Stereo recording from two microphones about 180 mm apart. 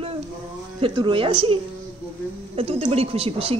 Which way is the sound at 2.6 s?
35° right (ahead or behind).